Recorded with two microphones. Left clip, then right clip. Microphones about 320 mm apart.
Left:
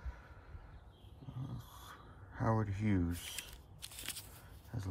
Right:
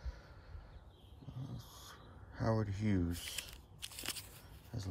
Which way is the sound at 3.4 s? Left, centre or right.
Centre.